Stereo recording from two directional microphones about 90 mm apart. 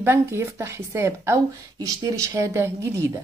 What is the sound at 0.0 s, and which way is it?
Speech, 30° right (ahead or behind).